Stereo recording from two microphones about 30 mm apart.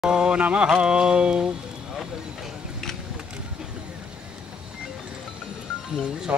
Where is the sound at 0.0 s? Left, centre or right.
Right.